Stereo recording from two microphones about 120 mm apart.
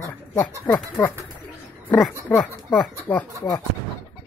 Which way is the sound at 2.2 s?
10° left (ahead or behind).